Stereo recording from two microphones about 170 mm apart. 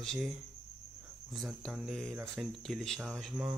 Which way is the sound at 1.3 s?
Centre (ahead or behind).